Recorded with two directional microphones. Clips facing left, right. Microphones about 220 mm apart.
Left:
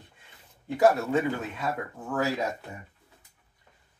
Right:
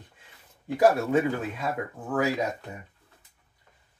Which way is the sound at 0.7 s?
15° right (ahead or behind).